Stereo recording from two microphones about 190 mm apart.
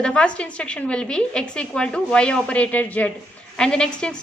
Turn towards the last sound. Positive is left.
turn(degrees=5)  # may be behind; listen again after turning